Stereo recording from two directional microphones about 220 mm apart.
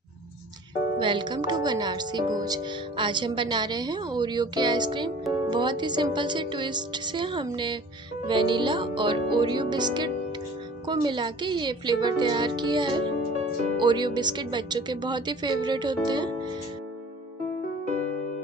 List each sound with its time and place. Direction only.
0.9 s speech: 20° right (ahead or behind)